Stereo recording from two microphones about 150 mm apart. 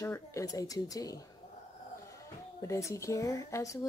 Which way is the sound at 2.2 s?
20° left (ahead or behind).